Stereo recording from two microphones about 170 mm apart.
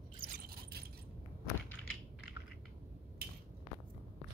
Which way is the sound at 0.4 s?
65° right (ahead or behind).